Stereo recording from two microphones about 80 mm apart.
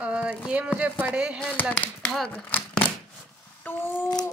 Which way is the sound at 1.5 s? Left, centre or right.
Centre.